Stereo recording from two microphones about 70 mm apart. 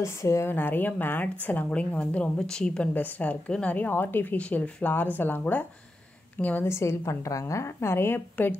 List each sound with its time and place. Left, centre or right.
0.0 s a woman's voice: left
0.5 s a woman's voice: left; by 2.9 s centre
2.9 s a woman's voice: left
6.6 s a woman's voice: left